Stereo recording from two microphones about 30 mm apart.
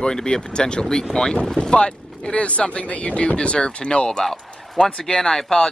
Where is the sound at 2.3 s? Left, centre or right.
Left.